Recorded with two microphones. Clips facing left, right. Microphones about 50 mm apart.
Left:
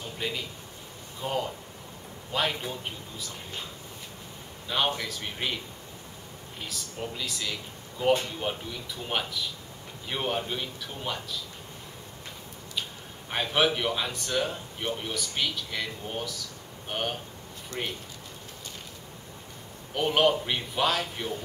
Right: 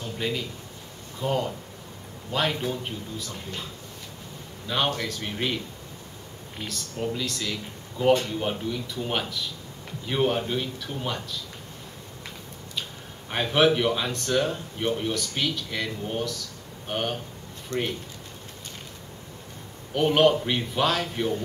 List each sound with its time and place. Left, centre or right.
0.0 s a sound: centre
1.2 s speech: centre
4.6 s speech: centre
6.6 s speech: centre
13.3 s speech: centre
17.7 s speech: right
19.9 s speech: centre